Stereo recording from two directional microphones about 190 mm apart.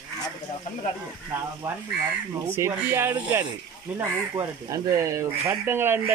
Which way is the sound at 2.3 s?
15° right (ahead or behind).